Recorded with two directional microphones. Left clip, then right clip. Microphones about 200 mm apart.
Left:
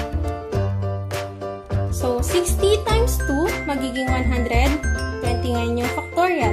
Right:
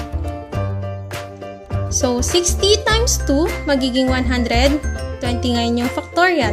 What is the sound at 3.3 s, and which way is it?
Speech, 50° right (ahead or behind).